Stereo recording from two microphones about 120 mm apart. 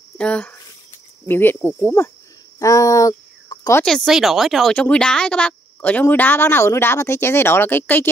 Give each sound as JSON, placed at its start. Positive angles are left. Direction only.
{"t": 0.2, "sound": "speech", "side_deg": 10}
{"t": 2.6, "sound": "speech", "side_deg": 25}
{"t": 3.8, "sound": "speech", "side_deg": 0}